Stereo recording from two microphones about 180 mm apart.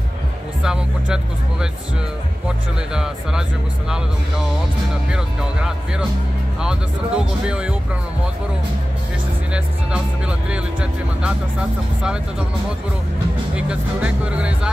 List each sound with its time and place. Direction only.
0.6 s speech: 5° right (ahead or behind)
2.9 s speech: 5° right (ahead or behind)
5.1 s speech: 5° right (ahead or behind)
9.5 s speech: 5° right (ahead or behind)
13.6 s speech: 5° right (ahead or behind)